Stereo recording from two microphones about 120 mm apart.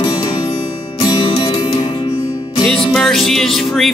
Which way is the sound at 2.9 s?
5° left (ahead or behind).